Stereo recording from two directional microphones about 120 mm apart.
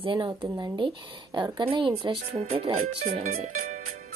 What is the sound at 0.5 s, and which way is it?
A woman's voice, 35° right (ahead or behind).